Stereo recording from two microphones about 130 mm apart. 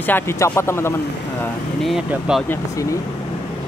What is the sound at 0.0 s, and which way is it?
Speech, 15° left (ahead or behind).